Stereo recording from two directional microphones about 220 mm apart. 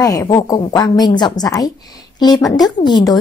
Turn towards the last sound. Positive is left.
turn(degrees=20)  # may be behind; listen again after turning